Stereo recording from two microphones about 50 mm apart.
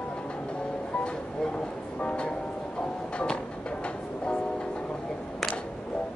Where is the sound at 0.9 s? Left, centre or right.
Centre.